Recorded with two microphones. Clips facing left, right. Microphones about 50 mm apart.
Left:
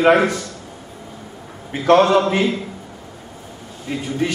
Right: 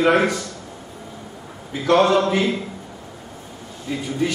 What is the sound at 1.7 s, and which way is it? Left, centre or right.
Speech, left.